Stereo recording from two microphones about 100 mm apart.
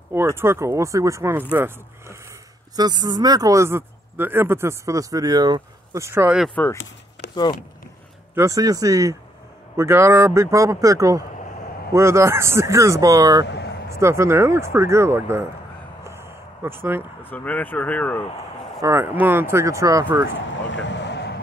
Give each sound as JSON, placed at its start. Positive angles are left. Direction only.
{"t": 0.1, "sound": "speech", "side_deg": -25}
{"t": 2.7, "sound": "speech", "side_deg": -40}
{"t": 5.9, "sound": "speech", "side_deg": -30}
{"t": 6.6, "sound": "speech", "side_deg": 15}
{"t": 8.4, "sound": "speech", "side_deg": -35}
{"t": 16.0, "sound": "a sound", "side_deg": -25}
{"t": 17.2, "sound": "speech", "side_deg": 20}
{"t": 18.8, "sound": "speech", "side_deg": -25}